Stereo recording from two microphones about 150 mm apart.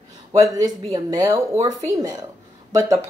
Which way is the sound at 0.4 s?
25° right (ahead or behind).